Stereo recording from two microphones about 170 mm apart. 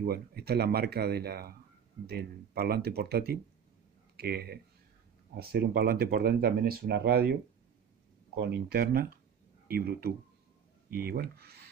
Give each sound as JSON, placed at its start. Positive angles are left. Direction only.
{"t": 0.0, "sound": "speech", "side_deg": -65}
{"t": 8.4, "sound": "speech", "side_deg": -70}